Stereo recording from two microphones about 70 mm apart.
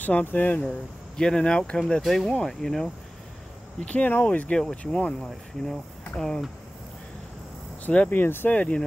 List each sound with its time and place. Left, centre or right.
0.0 s speech: left
0.6 s speech: centre
1.8 s speech: centre
3.8 s speech: centre
7.8 s speech: left
8.5 s speech: centre